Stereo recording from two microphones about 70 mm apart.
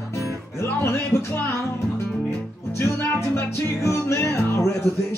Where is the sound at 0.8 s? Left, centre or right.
Left.